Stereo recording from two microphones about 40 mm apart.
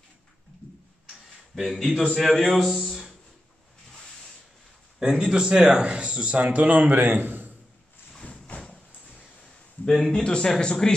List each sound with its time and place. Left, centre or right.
1.5 s a man's voice: centre
5.0 s a man's voice: centre; by 6.7 s right
6.7 s a man's voice: right
8.1 s a sound: left
9.8 s a man's voice: centre
10.1 s speech: left